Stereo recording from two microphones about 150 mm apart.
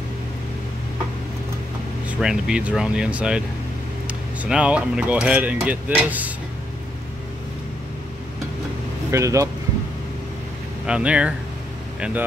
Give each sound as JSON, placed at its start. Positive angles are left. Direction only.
{"t": 2.0, "sound": "speech", "side_deg": -5}
{"t": 9.1, "sound": "speech", "side_deg": -20}
{"t": 10.9, "sound": "speech", "side_deg": -10}